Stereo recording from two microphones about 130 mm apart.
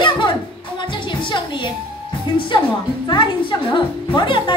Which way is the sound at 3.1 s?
40° left (ahead or behind).